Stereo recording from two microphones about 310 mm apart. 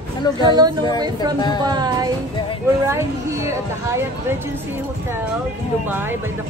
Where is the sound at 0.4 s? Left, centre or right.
Centre.